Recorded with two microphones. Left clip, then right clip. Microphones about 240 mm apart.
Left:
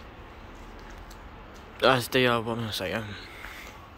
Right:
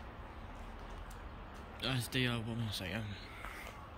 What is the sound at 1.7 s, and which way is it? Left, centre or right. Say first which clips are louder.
A man's voice: left 16 dB; centre.